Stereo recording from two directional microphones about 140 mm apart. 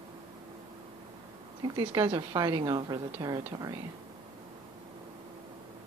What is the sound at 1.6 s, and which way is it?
A woman's voice, 30° right (ahead or behind).